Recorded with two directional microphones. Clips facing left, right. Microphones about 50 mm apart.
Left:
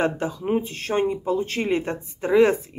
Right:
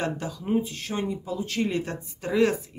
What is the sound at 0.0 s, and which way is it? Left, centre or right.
Speech, left.